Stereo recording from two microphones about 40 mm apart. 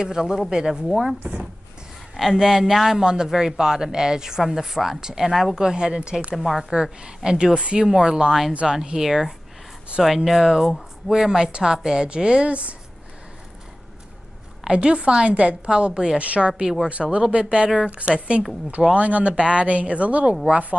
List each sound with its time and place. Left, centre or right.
0.0 s a woman's voice: centre
5.6 s speech: centre
6.3 s speech: centre
6.7 s a woman's voice: right
14.7 s speech: right
15.9 s a woman's voice: centre
16.2 s a woman's voice: right
19.3 s speech: right
19.6 s a woman's voice: right